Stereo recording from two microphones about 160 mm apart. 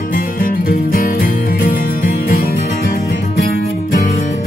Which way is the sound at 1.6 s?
65° left (ahead or behind).